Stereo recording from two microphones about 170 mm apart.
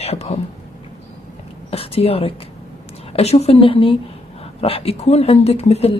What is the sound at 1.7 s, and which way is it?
A woman's voice, 35° left (ahead or behind).